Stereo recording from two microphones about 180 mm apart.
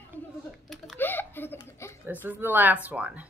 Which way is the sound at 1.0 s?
10° left (ahead or behind).